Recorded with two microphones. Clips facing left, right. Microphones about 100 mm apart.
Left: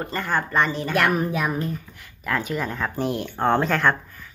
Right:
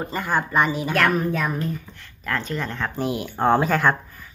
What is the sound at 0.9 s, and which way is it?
A woman's voice, 10° left (ahead or behind).